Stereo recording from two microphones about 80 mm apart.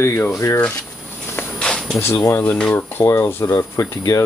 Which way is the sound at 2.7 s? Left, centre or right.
Left.